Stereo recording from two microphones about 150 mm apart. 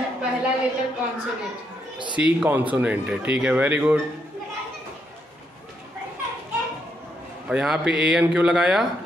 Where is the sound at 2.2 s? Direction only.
5° right (ahead or behind).